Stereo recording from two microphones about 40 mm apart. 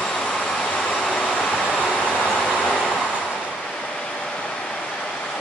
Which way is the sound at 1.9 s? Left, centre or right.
Left.